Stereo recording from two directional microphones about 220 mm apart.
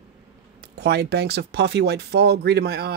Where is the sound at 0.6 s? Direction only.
50° right (ahead or behind).